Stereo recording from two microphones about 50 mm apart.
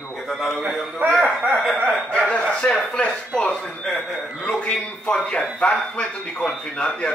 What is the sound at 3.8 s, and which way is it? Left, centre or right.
Speech, centre.